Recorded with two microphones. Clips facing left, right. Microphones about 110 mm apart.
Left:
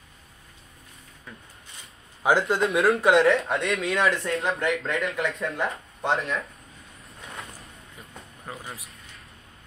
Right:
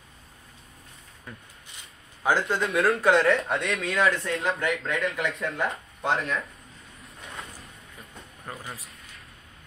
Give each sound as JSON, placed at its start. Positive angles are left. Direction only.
{"t": 2.4, "sound": "speech", "side_deg": 30}
{"t": 3.1, "sound": "speech", "side_deg": 0}
{"t": 8.5, "sound": "a sound", "side_deg": 5}